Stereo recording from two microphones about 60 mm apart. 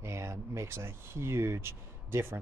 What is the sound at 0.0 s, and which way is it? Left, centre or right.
A man's voice, right.